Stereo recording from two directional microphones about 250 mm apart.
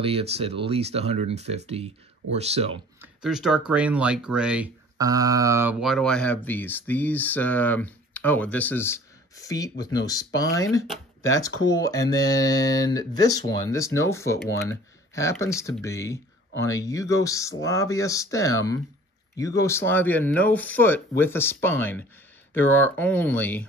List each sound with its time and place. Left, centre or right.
0.0 s speech: right
3.0 s speech: centre